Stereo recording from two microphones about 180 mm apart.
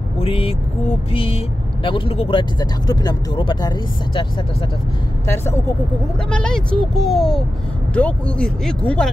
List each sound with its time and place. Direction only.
0.2 s speech: 30° left (ahead or behind)
5.2 s speech: 15° left (ahead or behind)
6.3 s speech: 5° left (ahead or behind)